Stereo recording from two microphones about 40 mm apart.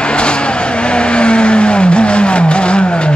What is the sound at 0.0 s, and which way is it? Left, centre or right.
Vehicle, left.